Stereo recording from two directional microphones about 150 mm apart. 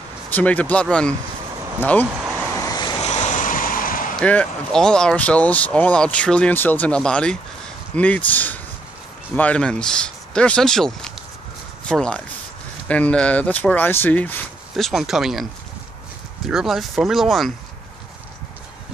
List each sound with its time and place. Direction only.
0.3 s speech: 10° left (ahead or behind)
2.5 s vehicle: 25° left (ahead or behind)
3.0 s vehicle: 50° left (ahead or behind); by 4.2 s 65° left (ahead or behind)
4.2 s speech: 5° left (ahead or behind)
14.9 s speech: centre (ahead or behind)
16.4 s speech: centre (ahead or behind)